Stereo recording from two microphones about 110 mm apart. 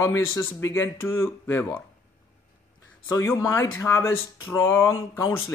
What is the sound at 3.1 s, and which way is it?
Speech, 30° left (ahead or behind).